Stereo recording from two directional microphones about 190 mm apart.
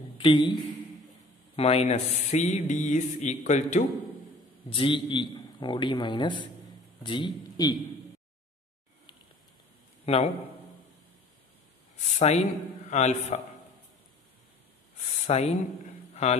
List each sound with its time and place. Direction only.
0.2 s a man's voice: 25° left (ahead or behind)
1.6 s speech: 30° left (ahead or behind)
4.6 s a man's voice: 25° left (ahead or behind)
10.0 s a man's voice: 30° left (ahead or behind)
12.0 s speech: 35° left (ahead or behind)
15.2 s speech: 35° left (ahead or behind)